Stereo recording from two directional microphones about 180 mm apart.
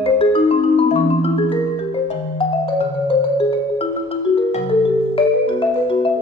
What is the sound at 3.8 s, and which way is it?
Music, 30° left (ahead or behind).